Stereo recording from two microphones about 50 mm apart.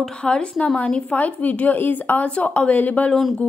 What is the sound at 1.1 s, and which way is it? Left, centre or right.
A woman's voice, left.